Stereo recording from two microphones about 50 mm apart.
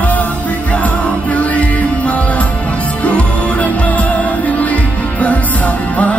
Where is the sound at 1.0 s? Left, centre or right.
Left.